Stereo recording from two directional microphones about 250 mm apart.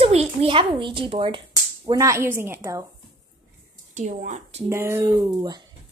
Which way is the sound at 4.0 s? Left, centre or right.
Right.